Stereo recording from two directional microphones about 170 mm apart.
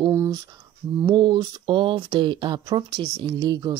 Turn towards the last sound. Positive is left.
turn(degrees=-25)  # may be behind; listen again after turning